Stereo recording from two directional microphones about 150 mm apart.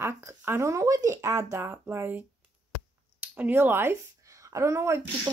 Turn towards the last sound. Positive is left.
turn(degrees=-20)  # may be behind; listen again after turning